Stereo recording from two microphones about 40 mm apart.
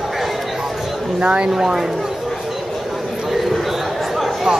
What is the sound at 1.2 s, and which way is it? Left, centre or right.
Speech, right.